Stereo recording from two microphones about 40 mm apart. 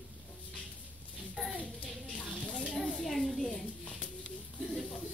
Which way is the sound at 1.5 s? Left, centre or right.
Left.